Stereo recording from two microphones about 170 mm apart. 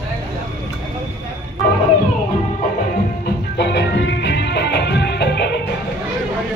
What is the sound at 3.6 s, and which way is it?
Music, 90° left.